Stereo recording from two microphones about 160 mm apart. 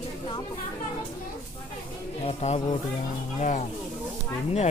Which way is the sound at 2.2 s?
40° left (ahead or behind).